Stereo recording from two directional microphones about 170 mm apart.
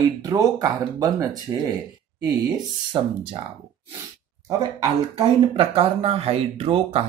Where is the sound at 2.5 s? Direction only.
30° right (ahead or behind).